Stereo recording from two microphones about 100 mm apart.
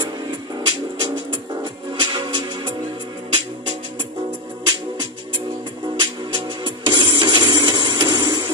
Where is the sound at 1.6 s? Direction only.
50° right (ahead or behind).